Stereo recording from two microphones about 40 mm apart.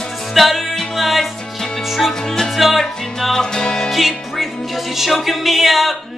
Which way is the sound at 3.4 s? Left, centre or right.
Centre.